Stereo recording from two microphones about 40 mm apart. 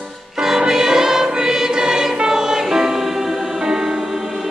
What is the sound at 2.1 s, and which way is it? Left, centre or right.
Music, centre.